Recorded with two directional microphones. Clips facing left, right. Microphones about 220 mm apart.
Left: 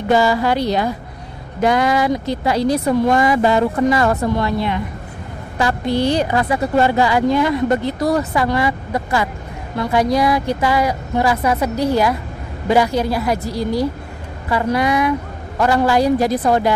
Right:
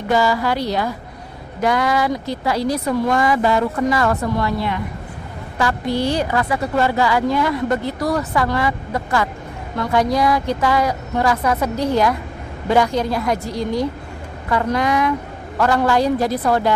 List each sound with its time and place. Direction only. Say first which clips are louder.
0.1 s a woman's voice: left 3 dB; 25° left (ahead or behind)